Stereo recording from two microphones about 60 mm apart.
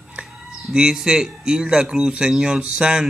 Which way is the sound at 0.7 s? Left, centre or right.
Centre.